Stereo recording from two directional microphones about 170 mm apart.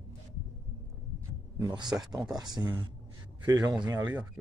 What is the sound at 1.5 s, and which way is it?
Speech, 25° right (ahead or behind).